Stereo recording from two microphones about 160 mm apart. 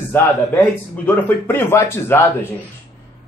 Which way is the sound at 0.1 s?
15° left (ahead or behind).